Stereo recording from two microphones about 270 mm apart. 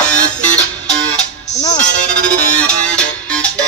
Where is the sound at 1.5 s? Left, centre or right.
Left.